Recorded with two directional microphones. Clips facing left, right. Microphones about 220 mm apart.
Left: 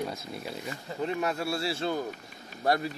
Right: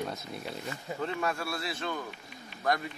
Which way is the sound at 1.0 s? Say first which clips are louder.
Left 4 dB; 20° left (ahead or behind).